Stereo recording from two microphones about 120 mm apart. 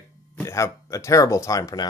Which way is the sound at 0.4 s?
25° left (ahead or behind).